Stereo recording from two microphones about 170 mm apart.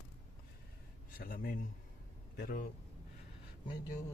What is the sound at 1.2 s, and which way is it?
Speech, 55° left (ahead or behind).